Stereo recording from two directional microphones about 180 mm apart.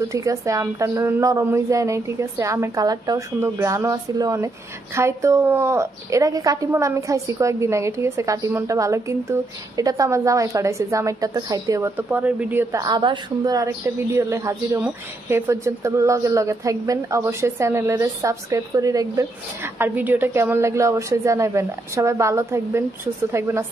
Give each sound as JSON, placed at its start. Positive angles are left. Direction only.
{"t": 0.1, "sound": "a woman's voice", "side_deg": -15}
{"t": 12.8, "sound": "a woman's voice", "side_deg": -25}